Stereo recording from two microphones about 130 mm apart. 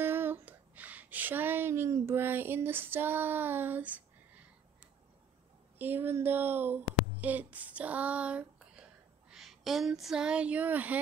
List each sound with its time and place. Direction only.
0.0 s speech: 15° right (ahead or behind)
5.8 s speech: 15° right (ahead or behind)